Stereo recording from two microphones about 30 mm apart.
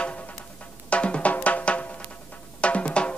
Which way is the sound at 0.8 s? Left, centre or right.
Left.